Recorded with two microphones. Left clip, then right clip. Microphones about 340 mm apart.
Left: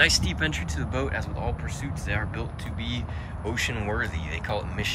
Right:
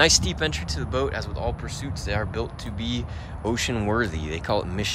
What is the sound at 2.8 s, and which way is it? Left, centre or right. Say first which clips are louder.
Speech: right 4 dB; centre.